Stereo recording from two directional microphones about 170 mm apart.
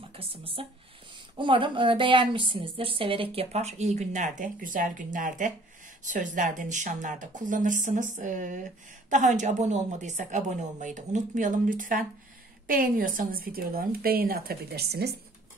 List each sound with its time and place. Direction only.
0.1 s a woman's voice: 35° right (ahead or behind); by 15.0 s 70° right (ahead or behind)